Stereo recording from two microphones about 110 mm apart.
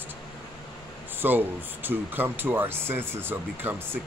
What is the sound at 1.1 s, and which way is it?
Speech, 20° right (ahead or behind).